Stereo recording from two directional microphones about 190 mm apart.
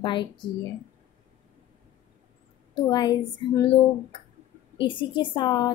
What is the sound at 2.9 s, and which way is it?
Speech, 20° left (ahead or behind).